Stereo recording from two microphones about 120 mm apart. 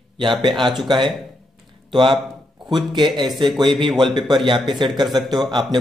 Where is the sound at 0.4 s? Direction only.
40° right (ahead or behind).